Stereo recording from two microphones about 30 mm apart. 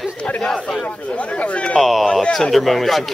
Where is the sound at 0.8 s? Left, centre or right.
Left.